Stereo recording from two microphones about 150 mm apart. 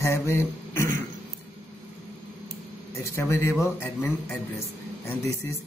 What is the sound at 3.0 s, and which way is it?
A man's voice, 20° left (ahead or behind).